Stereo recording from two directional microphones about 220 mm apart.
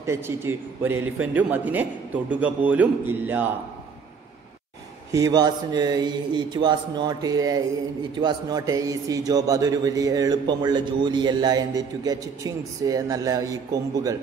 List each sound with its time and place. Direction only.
0.0 s speech: 10° right (ahead or behind)
5.1 s a man's voice: 15° right (ahead or behind)